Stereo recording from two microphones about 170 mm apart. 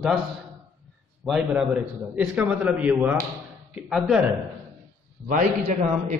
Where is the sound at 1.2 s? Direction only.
5° right (ahead or behind).